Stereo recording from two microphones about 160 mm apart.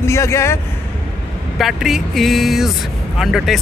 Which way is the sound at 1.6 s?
Centre (ahead or behind).